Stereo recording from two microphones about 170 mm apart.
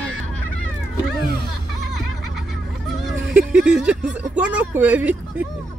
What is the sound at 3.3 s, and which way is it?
Speech, 5° right (ahead or behind).